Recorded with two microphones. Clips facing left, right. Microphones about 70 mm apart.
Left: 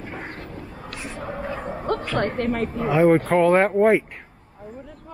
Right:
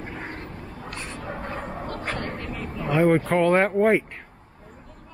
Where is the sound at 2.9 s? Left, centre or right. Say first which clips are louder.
Left 3 dB; centre.